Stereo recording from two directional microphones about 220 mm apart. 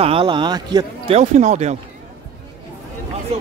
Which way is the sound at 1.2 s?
30° right (ahead or behind).